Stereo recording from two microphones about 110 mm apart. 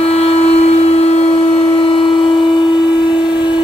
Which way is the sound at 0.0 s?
70° left (ahead or behind).